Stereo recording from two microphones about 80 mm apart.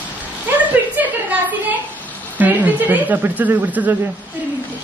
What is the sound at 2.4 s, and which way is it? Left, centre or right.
Speech, right.